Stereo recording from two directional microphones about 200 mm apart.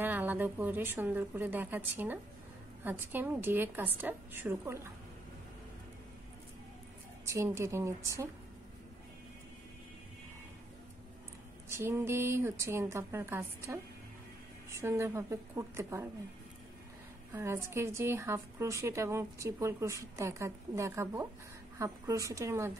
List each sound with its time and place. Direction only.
0.0 s a woman's voice: 10° right (ahead or behind)
7.2 s a woman's voice: 15° right (ahead or behind)
11.7 s a woman's voice: 10° right (ahead or behind)
17.3 s a woman's voice: 15° right (ahead or behind)